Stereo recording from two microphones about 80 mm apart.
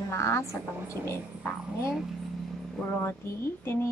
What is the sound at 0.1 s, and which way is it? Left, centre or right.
Speech, left.